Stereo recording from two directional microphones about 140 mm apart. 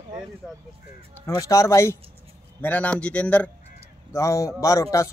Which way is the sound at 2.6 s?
10° left (ahead or behind).